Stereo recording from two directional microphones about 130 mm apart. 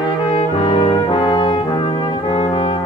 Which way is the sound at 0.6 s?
40° left (ahead or behind).